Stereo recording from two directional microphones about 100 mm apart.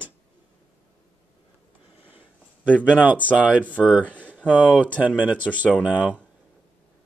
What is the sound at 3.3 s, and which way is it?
Speech, 10° right (ahead or behind).